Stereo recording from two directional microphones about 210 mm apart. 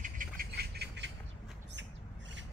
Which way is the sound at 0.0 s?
40° right (ahead or behind).